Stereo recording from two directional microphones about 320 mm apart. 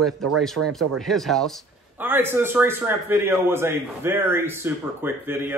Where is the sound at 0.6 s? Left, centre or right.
Right.